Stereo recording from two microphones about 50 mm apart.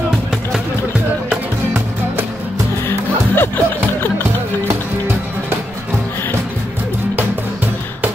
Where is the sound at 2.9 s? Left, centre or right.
Left.